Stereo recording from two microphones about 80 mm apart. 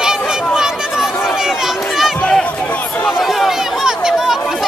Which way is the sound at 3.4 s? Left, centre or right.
Centre.